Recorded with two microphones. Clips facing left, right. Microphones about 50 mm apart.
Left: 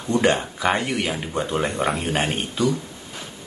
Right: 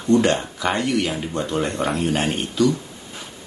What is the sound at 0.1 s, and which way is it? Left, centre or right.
Speech, centre.